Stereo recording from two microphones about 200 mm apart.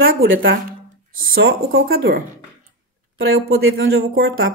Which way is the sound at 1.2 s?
80° right.